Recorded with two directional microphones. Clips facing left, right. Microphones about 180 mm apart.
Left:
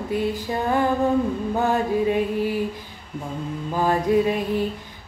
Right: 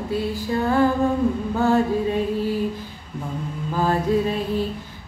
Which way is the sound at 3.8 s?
15° left (ahead or behind).